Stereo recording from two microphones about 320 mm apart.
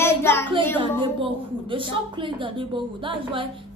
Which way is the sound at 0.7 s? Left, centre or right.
Centre.